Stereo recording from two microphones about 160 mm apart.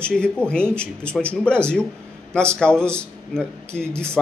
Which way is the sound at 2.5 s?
5° left (ahead or behind).